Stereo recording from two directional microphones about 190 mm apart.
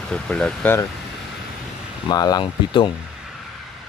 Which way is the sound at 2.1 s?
20° left (ahead or behind).